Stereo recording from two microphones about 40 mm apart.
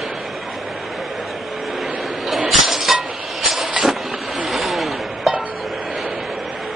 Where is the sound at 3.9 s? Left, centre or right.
Centre.